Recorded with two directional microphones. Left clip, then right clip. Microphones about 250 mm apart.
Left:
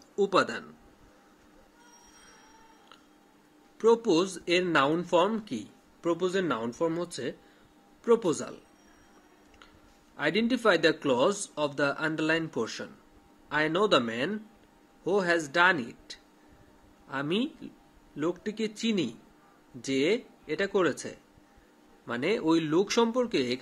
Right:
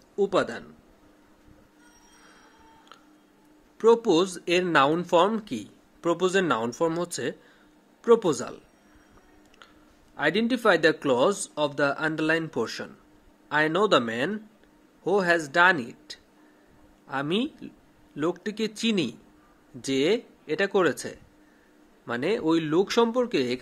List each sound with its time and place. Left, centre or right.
0.1 s a man's voice: centre
3.7 s speech: centre
10.1 s speech: centre